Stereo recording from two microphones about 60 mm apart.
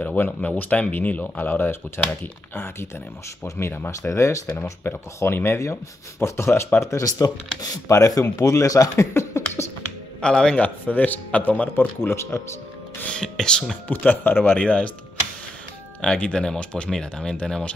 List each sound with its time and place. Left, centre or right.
0.0 s a man's voice: left
3.9 s speech: left
4.8 s speech: left
5.6 s speech: left
6.8 s speech: left
9.1 s a sound: left
10.2 s speech: centre
10.5 s a man's voice: left
12.0 s speech: left
13.1 s speech: centre
13.8 s speech: left
14.6 s a man's voice: left
16.0 s speech: centre